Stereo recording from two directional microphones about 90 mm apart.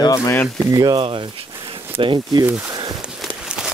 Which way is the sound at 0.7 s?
45° right (ahead or behind).